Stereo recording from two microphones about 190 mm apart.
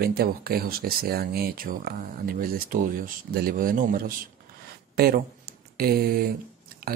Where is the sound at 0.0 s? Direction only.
55° right (ahead or behind).